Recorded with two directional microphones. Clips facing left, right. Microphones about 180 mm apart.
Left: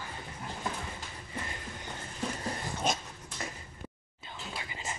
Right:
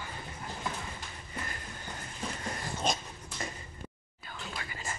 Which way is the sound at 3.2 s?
Centre (ahead or behind).